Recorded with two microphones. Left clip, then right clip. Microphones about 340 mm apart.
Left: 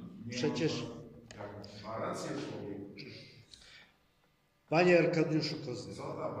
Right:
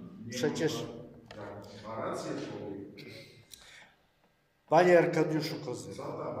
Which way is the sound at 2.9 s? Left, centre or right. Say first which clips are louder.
Right 1 dB; right.